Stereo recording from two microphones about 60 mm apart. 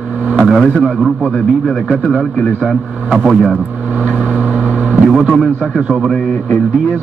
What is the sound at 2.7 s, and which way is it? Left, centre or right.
Speech, centre.